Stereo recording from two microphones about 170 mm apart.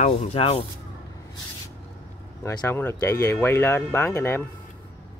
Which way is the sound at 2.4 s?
15° left (ahead or behind).